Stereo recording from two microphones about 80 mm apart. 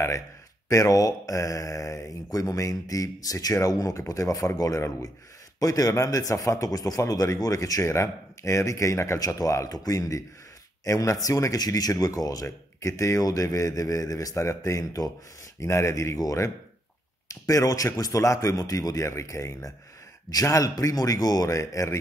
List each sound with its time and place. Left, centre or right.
0.7 s speech: left
9.2 s speech: left